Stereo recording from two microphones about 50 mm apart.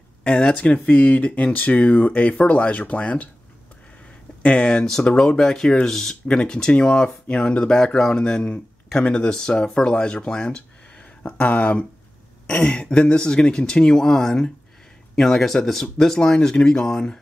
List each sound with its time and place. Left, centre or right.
0.2 s speech: left
4.4 s speech: left